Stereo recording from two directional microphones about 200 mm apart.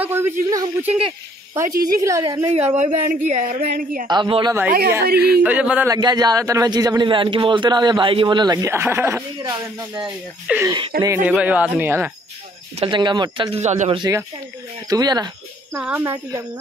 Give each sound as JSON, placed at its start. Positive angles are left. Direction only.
{"t": 0.0, "sound": "speech", "side_deg": -10}
{"t": 1.7, "sound": "a woman's voice", "side_deg": -45}
{"t": 2.0, "sound": "speech", "side_deg": -15}
{"t": 2.8, "sound": "a woman's voice", "side_deg": -35}
{"t": 4.1, "sound": "a man's voice", "side_deg": -25}
{"t": 4.6, "sound": "a woman's voice", "side_deg": -50}
{"t": 5.4, "sound": "speech", "side_deg": -5}
{"t": 5.9, "sound": "a man's voice", "side_deg": -20}
{"t": 10.0, "sound": "speech", "side_deg": -5}
{"t": 10.9, "sound": "a woman's voice", "side_deg": -50}
{"t": 11.2, "sound": "speech", "side_deg": -5}
{"t": 12.7, "sound": "a man's voice", "side_deg": -25}
{"t": 15.8, "sound": "speech", "side_deg": -10}